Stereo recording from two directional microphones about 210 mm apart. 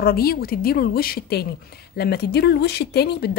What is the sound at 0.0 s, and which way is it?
Speech, 45° left (ahead or behind).